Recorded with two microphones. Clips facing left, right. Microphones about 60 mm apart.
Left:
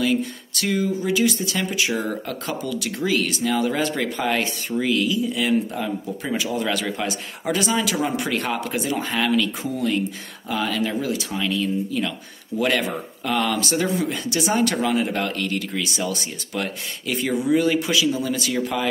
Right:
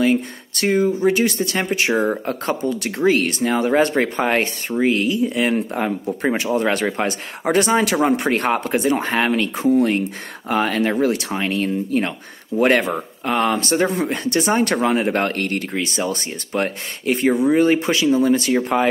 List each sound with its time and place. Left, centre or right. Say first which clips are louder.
0.0 s speech: right 4 dB; right
5.1 s speech: right 2 dB; right
13.6 s speech: right 3 dB; right